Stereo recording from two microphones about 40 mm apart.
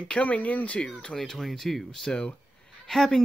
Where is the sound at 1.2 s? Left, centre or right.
Centre.